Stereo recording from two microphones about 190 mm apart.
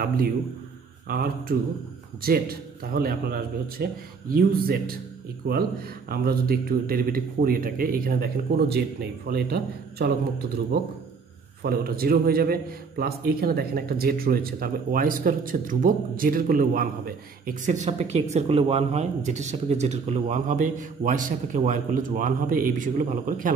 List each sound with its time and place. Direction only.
1.0 s a man's voice: 50° right (ahead or behind)